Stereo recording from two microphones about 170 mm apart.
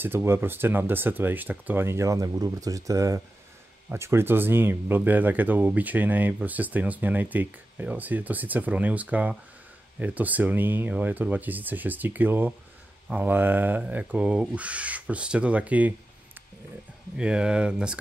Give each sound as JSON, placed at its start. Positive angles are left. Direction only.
{"t": 0.0, "sound": "speech", "side_deg": -15}
{"t": 17.2, "sound": "speech", "side_deg": -5}